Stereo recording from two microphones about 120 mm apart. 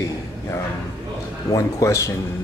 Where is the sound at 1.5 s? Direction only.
30° left (ahead or behind).